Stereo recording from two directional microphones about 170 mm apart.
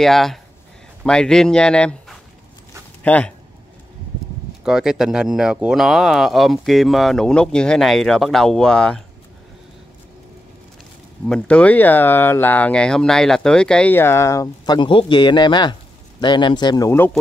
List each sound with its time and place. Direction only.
0.0 s speech: centre (ahead or behind)
4.6 s speech: 5° right (ahead or behind)
11.2 s speech: 5° left (ahead or behind)